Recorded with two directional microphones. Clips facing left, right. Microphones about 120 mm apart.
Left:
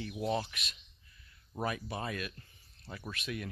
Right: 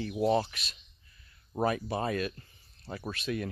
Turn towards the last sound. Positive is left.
turn(degrees=-35)  # may be behind; listen again after turning